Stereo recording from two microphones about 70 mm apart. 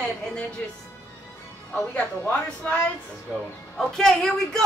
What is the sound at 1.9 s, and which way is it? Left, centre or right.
Speech, centre.